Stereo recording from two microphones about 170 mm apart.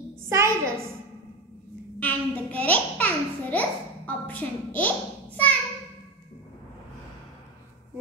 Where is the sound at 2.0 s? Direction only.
10° left (ahead or behind).